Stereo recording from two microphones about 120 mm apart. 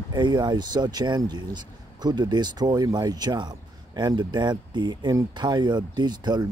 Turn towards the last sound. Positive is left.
turn(degrees=-40)  # may be behind; listen again after turning